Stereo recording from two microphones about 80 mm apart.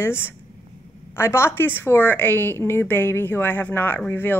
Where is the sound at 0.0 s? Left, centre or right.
Left.